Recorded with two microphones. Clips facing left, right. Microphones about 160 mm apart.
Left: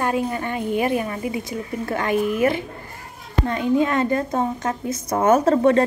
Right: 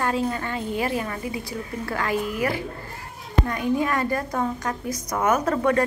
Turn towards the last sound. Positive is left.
turn(degrees=25)  # may be behind; listen again after turning